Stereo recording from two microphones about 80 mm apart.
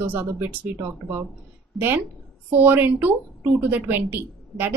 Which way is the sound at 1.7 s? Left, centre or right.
Right.